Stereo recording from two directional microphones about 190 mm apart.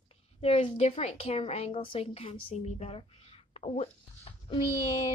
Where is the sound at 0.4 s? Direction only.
30° left (ahead or behind).